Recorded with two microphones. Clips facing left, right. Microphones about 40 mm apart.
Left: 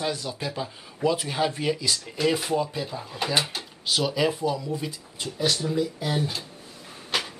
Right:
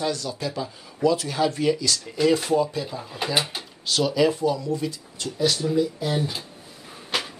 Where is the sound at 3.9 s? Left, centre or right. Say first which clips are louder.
Right 3 dB; centre.